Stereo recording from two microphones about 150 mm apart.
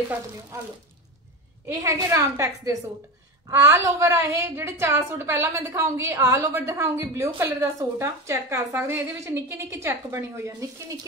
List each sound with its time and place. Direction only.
1.7 s a woman's voice: 20° right (ahead or behind)